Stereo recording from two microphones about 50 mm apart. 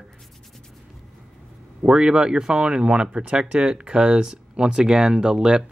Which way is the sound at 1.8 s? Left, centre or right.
Centre.